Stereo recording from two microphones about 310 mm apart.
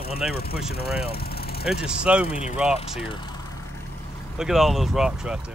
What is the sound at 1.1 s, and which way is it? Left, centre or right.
Vehicle, left.